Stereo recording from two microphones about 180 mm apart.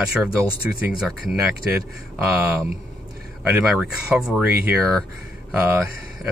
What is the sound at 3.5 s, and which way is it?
Speech, 5° right (ahead or behind).